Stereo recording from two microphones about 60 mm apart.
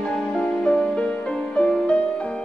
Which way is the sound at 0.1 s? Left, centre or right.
Centre.